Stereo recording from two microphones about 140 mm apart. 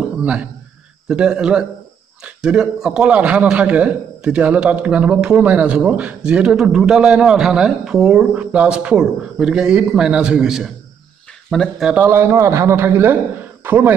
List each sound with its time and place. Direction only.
0.2 s a man's voice: 10° right (ahead or behind)
11.9 s a man's voice: 15° right (ahead or behind)